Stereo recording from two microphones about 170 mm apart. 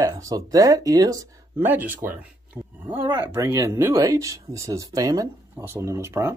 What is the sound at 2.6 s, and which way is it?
Dog, 5° right (ahead or behind).